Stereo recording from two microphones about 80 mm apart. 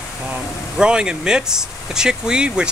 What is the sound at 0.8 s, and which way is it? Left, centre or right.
Speech, centre.